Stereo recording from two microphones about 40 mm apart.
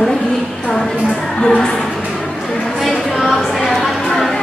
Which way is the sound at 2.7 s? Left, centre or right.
Centre.